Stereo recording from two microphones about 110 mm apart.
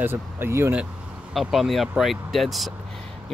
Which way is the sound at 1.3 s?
Centre (ahead or behind).